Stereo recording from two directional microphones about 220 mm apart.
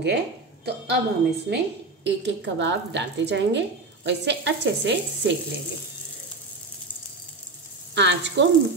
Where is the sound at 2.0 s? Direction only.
50° right (ahead or behind).